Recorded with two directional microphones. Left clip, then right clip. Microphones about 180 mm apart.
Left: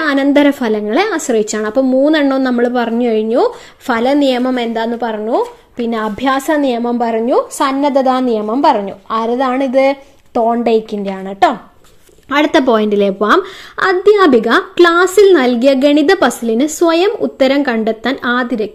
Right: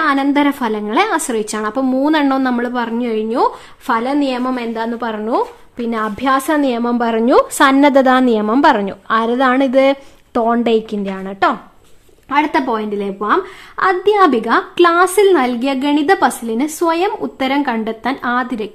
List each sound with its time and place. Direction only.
0.0 s a woman's voice: 10° left (ahead or behind)
12.3 s speech: 20° left (ahead or behind)
13.7 s a woman's voice: 10° left (ahead or behind)